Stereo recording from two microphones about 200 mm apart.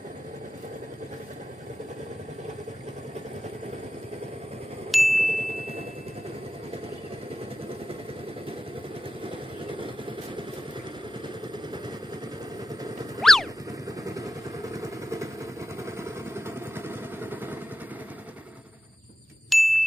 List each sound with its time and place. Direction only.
4.9 s ding: centre (ahead or behind)
9.2 s vehicle: 25° right (ahead or behind)
13.2 s boing: centre (ahead or behind)
13.8 s vehicle: 15° right (ahead or behind)
19.5 s ding: centre (ahead or behind)